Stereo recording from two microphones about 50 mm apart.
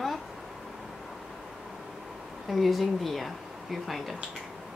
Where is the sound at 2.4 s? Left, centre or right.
Centre.